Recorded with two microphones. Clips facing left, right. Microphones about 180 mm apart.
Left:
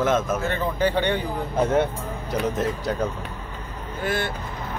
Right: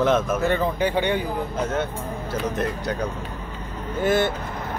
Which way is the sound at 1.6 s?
30° left (ahead or behind).